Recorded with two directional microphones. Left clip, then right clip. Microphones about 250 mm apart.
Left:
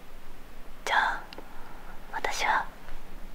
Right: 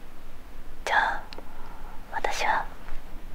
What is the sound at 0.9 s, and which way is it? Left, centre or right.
Whispering, right.